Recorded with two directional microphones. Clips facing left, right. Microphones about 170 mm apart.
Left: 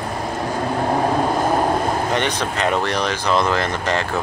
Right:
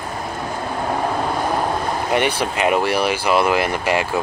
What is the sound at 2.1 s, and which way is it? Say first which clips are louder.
Speech: right 2 dB; 10° right (ahead or behind).